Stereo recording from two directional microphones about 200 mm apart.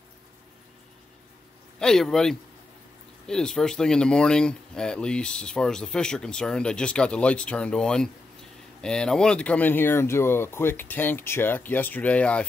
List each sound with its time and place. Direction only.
1.8 s speech: centre (ahead or behind)